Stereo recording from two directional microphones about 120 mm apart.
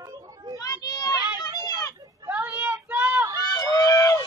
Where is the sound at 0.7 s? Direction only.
30° left (ahead or behind).